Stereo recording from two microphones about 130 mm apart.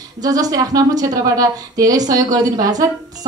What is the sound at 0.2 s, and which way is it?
A woman's voice, 30° right (ahead or behind).